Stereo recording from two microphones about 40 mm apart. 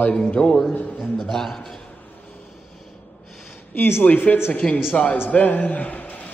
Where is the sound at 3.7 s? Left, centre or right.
Left.